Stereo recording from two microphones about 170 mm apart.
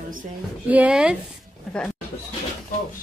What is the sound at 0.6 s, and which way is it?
Speech, 10° right (ahead or behind).